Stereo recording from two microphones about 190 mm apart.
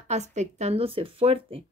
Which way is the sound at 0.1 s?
40° right (ahead or behind).